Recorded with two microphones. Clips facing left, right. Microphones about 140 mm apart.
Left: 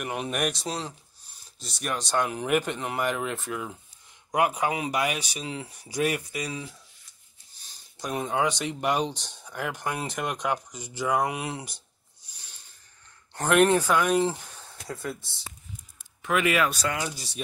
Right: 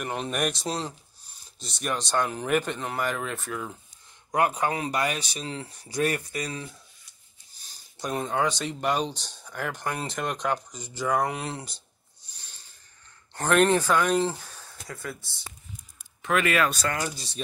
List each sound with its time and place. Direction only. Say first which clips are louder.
0.0 s speech: even; 10° left (ahead or behind)
8.0 s speech: even; 5° left (ahead or behind)
13.3 s speech: left 1 dB; 10° left (ahead or behind)
16.2 s speech: even; 10° left (ahead or behind)